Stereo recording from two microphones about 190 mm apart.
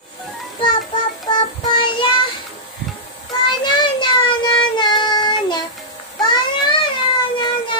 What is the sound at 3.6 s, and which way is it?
Child singing, 25° left (ahead or behind).